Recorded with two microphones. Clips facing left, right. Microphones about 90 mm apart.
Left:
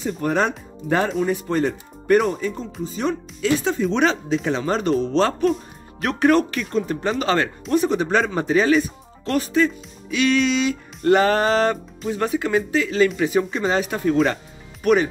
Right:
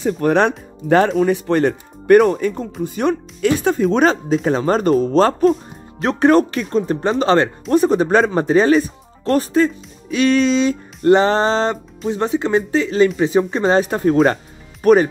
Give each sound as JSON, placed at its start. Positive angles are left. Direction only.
{"t": 0.0, "sound": "speech", "side_deg": -70}
{"t": 5.9, "sound": "speech", "side_deg": -30}
{"t": 11.1, "sound": "speech", "side_deg": -25}
{"t": 13.6, "sound": "speech", "side_deg": -40}